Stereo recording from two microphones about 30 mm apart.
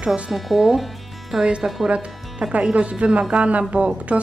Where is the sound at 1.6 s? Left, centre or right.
Right.